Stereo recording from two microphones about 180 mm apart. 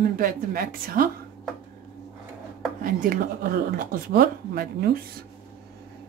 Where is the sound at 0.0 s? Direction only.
50° right (ahead or behind).